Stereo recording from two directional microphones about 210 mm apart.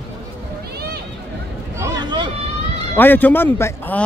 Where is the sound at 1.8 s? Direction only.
20° right (ahead or behind).